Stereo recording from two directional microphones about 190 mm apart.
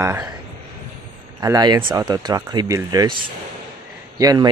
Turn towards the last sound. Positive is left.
turn(degrees=-20)  # may be behind; listen again after turning